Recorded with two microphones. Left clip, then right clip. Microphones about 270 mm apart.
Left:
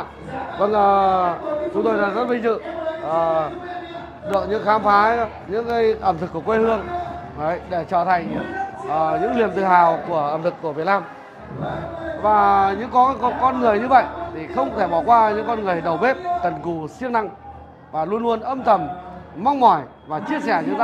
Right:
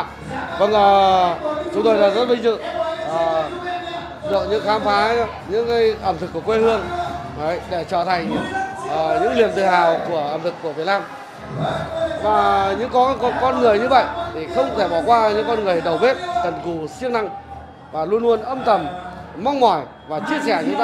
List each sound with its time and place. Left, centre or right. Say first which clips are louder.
0.6 s a man's voice: right 3 dB; centre
2.5 s speech: right 2 dB; left
4.3 s speech: even; left
5.5 s speech: right 2 dB; left
10.1 s speech: left 1 dB; left
12.3 s speech: left 2 dB; left